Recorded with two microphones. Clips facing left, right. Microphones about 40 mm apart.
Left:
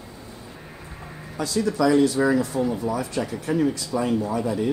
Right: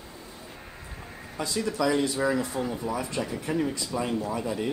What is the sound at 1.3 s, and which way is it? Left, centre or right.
Speech, centre.